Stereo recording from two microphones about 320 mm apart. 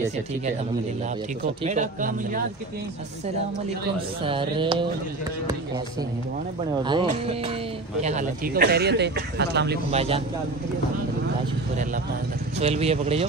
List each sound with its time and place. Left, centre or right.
1.6 s speech: right
4.2 s speech: centre
6.8 s speech: centre; by 9.8 s right
9.8 s speech: centre
12.5 s speech: centre